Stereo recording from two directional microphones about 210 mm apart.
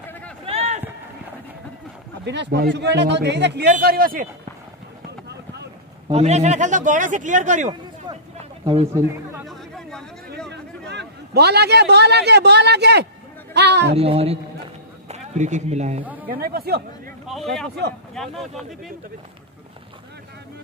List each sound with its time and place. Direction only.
0.5 s run: 30° right (ahead or behind)
2.2 s speech: 50° right (ahead or behind)
3.7 s speech: 45° right (ahead or behind)
6.1 s a man's voice: 30° right (ahead or behind)
9.4 s a sound: centre (ahead or behind)
10.9 s a man's voice: 55° right (ahead or behind)
13.9 s a man's voice: 30° right (ahead or behind)
16.0 s speech: 5° right (ahead or behind)
16.3 s speech: 45° right (ahead or behind)
17.3 s speech: centre (ahead or behind)